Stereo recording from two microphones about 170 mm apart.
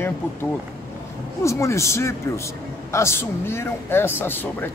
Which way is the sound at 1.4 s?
15° left (ahead or behind).